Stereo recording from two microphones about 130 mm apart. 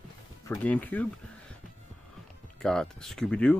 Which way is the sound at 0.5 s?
10° left (ahead or behind).